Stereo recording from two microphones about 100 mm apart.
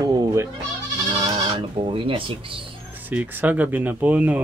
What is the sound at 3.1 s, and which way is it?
Speech, 15° right (ahead or behind).